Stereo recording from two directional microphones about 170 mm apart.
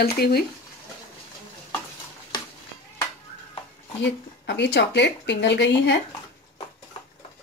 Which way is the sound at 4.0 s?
90° left.